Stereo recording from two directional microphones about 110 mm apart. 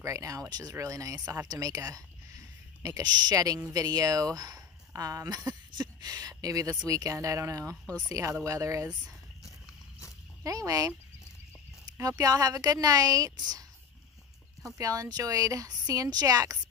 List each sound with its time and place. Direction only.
0.0 s speech: 30° right (ahead or behind)
10.4 s speech: 30° right (ahead or behind)
12.0 s speech: 30° right (ahead or behind)
14.8 s speech: 30° right (ahead or behind)